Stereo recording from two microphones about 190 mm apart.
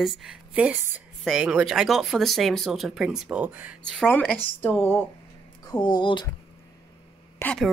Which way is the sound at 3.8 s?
5° left (ahead or behind).